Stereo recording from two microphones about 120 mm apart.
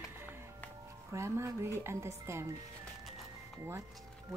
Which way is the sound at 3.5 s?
25° right (ahead or behind).